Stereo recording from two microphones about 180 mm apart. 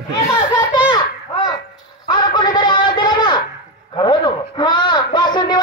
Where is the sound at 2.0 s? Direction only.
25° left (ahead or behind).